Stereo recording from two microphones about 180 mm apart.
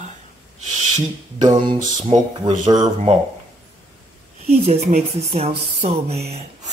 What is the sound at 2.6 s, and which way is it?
Speech, 25° right (ahead or behind).